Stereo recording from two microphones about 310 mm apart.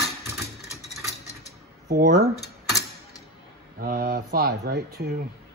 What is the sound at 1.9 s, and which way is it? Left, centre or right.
Speech, right.